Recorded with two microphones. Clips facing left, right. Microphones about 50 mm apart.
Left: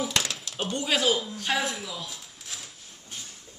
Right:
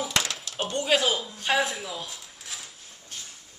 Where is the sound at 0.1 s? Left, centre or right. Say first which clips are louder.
Right 1 dB; centre.